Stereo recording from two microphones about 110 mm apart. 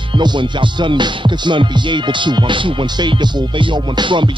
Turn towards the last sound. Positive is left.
turn(degrees=-45)  # may be behind; listen again after turning